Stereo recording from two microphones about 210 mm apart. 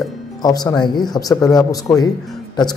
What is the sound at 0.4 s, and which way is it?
A man's voice, 20° left (ahead or behind).